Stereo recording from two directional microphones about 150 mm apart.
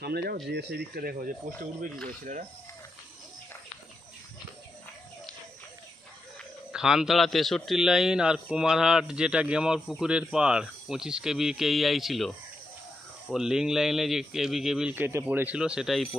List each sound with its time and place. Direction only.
0.0 s speech: 90° right; by 2.4 s 60° right (ahead or behind)
6.7 s a man's voice: 5° right (ahead or behind)
13.3 s a man's voice: 5° right (ahead or behind)